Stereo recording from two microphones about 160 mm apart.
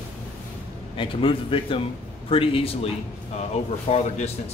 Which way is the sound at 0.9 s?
30° left (ahead or behind).